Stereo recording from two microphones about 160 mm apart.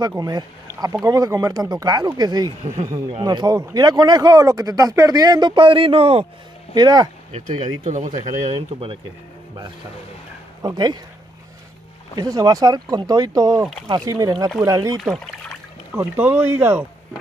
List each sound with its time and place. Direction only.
0.0 s speech: 25° right (ahead or behind)
2.6 s speech: 45° right (ahead or behind)
3.1 s speech: 30° right (ahead or behind)
7.3 s speech: 50° right (ahead or behind)
8.4 s speech: 40° right (ahead or behind)
10.6 s speech: 25° right (ahead or behind)
12.2 s speech: 25° right (ahead or behind)